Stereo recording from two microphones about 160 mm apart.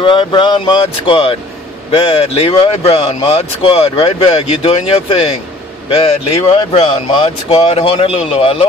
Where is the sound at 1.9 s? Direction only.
35° left (ahead or behind).